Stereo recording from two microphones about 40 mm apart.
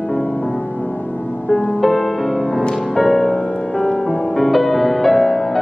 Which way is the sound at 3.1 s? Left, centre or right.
Centre.